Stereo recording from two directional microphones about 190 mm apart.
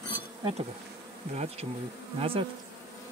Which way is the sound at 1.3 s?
35° right (ahead or behind).